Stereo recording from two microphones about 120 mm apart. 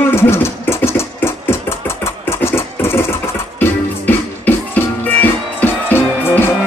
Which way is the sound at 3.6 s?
15° left (ahead or behind).